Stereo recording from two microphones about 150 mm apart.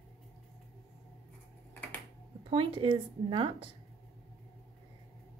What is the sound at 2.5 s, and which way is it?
Speech, 35° right (ahead or behind).